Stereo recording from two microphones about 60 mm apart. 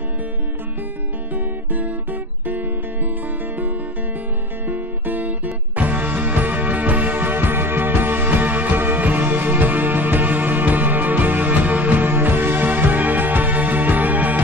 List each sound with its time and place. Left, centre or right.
1.3 s music: right
4.6 s music: right